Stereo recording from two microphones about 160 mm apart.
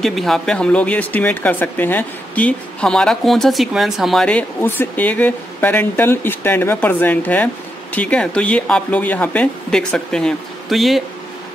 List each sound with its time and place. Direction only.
0.0 s speech: centre (ahead or behind)